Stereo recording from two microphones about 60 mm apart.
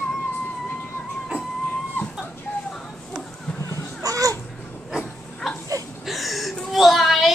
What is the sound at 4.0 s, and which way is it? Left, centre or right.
Babbling, right.